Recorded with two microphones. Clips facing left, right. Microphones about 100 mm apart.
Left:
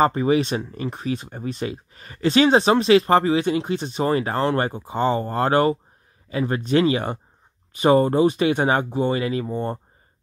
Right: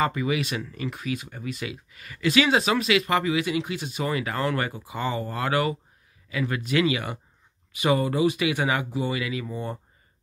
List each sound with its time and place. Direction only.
0.0 s speech: 35° left (ahead or behind)